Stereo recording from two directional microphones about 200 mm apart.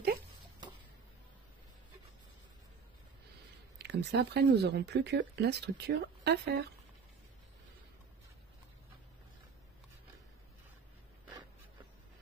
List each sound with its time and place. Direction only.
3.7 s speech: 55° right (ahead or behind)